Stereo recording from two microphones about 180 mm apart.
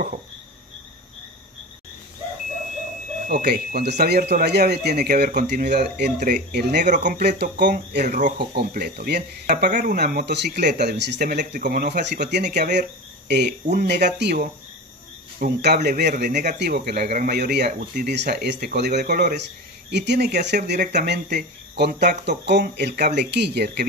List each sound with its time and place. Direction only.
3.3 s speech: 60° right (ahead or behind)
6.1 s speech: 45° right (ahead or behind)
6.5 s speech: 65° right (ahead or behind)
6.8 s speech: 45° right (ahead or behind)
7.2 s speech: 60° right (ahead or behind)
9.7 s speech: 45° right (ahead or behind)
9.9 s speech: 60° right (ahead or behind)